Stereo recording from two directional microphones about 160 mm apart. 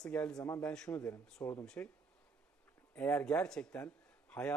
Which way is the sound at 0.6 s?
5° left (ahead or behind).